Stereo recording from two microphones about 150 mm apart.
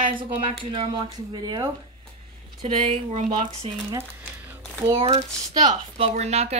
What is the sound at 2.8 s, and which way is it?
Speech, 50° right (ahead or behind).